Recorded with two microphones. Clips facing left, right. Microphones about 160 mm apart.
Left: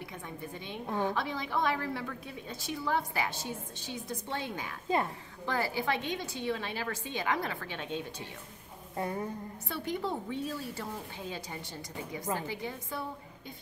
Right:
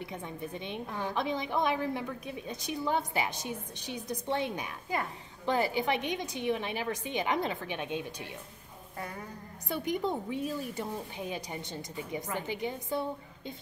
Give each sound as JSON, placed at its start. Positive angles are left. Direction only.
{"t": 0.0, "sound": "a woman's voice", "side_deg": -20}
{"t": 0.8, "sound": "a woman's voice", "side_deg": 20}
{"t": 1.1, "sound": "a woman's voice", "side_deg": -20}
{"t": 8.9, "sound": "a woman's voice", "side_deg": 25}
{"t": 9.7, "sound": "a woman's voice", "side_deg": -15}